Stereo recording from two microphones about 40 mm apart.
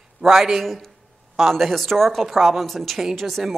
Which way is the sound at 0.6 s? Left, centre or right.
Centre.